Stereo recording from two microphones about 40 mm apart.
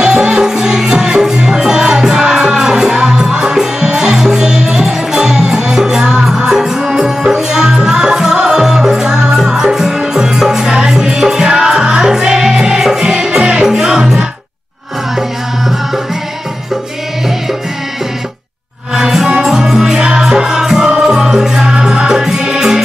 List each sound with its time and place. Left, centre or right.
0.0 s music: centre
18.9 s music: centre